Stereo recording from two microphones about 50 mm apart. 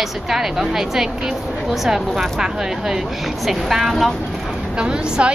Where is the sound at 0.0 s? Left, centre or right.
Centre.